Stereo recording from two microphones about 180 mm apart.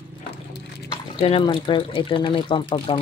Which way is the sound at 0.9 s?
30° left (ahead or behind).